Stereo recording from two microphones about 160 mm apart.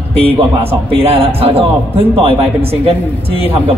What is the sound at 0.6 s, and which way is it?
Speech, 35° right (ahead or behind).